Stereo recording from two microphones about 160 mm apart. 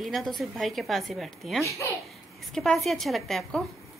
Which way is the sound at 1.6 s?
20° left (ahead or behind).